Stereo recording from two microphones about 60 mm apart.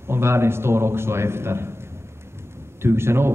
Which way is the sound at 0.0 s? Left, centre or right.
Right.